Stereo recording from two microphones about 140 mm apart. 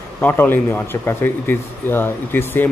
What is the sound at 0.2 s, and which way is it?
Speech, 15° left (ahead or behind).